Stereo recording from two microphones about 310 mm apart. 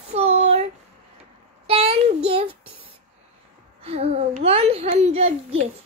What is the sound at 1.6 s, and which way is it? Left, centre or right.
Child singing, centre.